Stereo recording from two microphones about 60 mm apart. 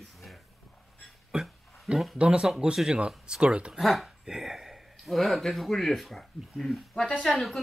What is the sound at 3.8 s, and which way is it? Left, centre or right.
Speech, centre.